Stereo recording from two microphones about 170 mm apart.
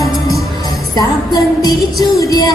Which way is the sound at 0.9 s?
20° left (ahead or behind).